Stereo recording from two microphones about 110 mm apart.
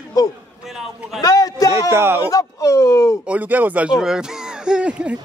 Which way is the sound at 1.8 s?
20° right (ahead or behind).